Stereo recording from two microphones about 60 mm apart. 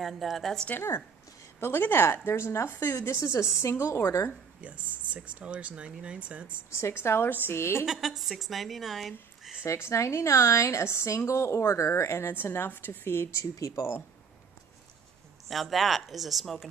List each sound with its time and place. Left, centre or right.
0.0 s a woman's voice: centre
0.7 s a woman's voice: left
4.6 s speech: right
6.8 s a woman's voice: left
7.8 s a woman's voice: centre
9.7 s a woman's voice: left
12.4 s a woman's voice: left
13.4 s speech: left
15.4 s a woman's voice: centre